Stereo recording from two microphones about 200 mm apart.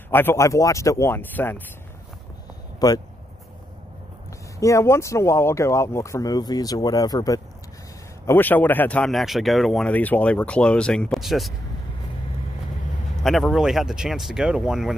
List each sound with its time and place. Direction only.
0.1 s speech: 10° left (ahead or behind)
2.8 s speech: 20° left (ahead or behind)
4.6 s speech: 15° left (ahead or behind); by 11.5 s centre (ahead or behind)
13.2 s speech: centre (ahead or behind)